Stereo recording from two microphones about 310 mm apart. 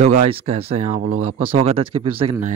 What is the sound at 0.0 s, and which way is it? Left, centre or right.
Speech, right.